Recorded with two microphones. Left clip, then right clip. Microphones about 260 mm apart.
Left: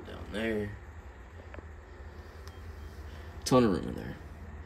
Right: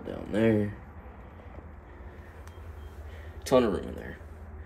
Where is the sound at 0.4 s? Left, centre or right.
Left.